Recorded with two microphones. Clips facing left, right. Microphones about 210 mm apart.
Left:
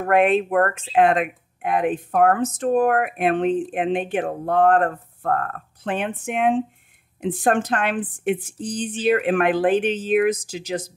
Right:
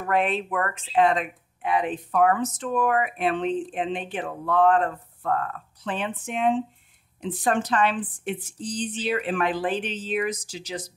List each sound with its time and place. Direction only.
0.0 s speech: 55° left (ahead or behind)